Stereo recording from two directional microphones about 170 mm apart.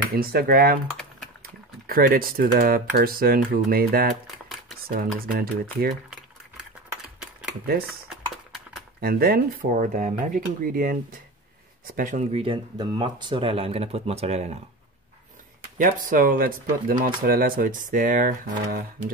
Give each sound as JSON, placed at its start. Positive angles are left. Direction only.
{"t": 0.2, "sound": "speech", "side_deg": -60}
{"t": 1.4, "sound": "typing", "side_deg": -60}
{"t": 2.6, "sound": "speech", "side_deg": -60}
{"t": 6.5, "sound": "a sound", "side_deg": -5}
{"t": 9.0, "sound": "speech", "side_deg": -60}
{"t": 15.8, "sound": "speech", "side_deg": -55}